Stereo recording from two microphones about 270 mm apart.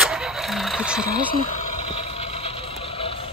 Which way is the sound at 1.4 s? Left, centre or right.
Left.